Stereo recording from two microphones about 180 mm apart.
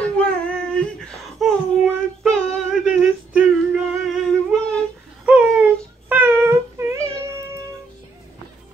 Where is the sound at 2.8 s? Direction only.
5° right (ahead or behind).